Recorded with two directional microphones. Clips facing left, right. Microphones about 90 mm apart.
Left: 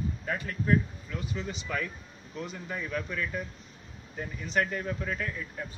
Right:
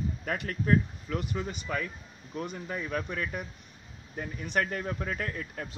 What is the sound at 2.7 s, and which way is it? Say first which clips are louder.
Speech: even; 40° right (ahead or behind).